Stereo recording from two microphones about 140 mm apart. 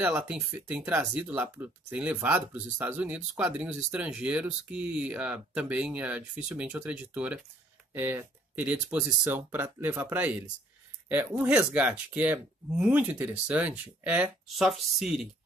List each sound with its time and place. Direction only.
0.0 s speech: 10° right (ahead or behind)